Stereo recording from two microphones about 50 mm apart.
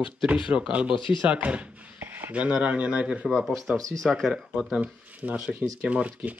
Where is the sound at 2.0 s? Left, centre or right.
Right.